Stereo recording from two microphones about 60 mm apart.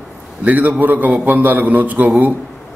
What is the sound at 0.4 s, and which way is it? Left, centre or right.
A man's voice, right.